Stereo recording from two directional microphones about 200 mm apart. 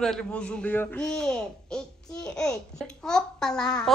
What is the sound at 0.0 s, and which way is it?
A man's voice, 5° left (ahead or behind).